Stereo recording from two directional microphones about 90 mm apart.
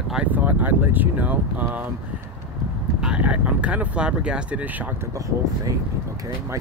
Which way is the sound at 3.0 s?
10° right (ahead or behind).